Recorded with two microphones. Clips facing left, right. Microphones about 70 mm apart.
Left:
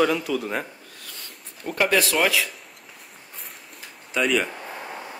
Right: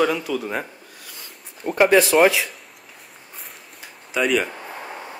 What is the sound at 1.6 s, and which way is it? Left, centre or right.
Speech, centre.